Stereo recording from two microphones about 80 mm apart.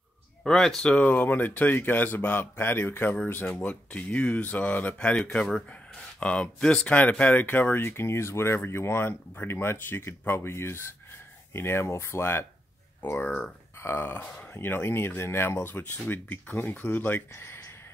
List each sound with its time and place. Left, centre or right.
0.4 s speech: centre
13.7 s speech: left
17.3 s a sound: left